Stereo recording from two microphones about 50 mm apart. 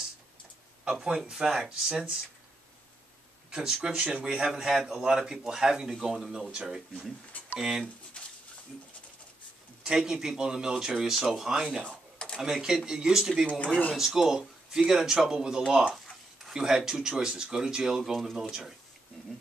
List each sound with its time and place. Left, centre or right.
0.8 s speech: centre
3.4 s speech: centre
8.2 s a sound: centre
9.8 s speech: centre
11.8 s a sound: centre
12.4 s speech: centre